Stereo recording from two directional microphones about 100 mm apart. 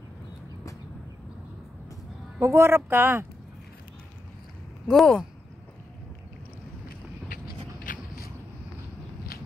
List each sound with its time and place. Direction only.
2.4 s speech: 25° right (ahead or behind)
4.8 s speech: centre (ahead or behind)